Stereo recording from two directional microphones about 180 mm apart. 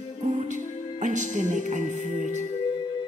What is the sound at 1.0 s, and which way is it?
Speech, 45° right (ahead or behind).